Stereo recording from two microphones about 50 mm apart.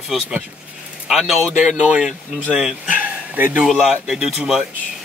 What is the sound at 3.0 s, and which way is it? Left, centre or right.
Bow-wow, right.